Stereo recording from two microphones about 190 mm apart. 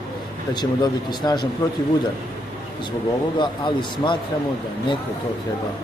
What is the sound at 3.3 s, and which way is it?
Speech, 25° left (ahead or behind).